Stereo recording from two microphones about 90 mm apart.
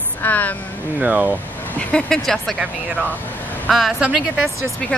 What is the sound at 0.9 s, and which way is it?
Speech, 15° right (ahead or behind).